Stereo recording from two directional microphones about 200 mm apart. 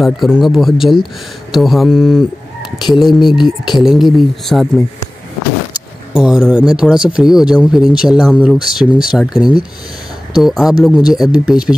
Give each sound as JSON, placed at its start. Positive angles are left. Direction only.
{"t": 0.0, "sound": "speech", "side_deg": 0}
{"t": 3.3, "sound": "speech", "side_deg": 20}
{"t": 3.7, "sound": "speech", "side_deg": 0}
{"t": 6.1, "sound": "speech", "side_deg": -5}